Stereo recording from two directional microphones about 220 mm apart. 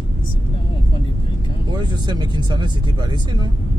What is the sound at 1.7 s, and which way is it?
Speech, 20° right (ahead or behind).